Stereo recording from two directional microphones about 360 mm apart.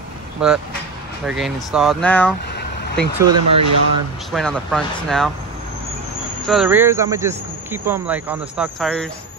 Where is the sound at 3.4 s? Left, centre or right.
Right.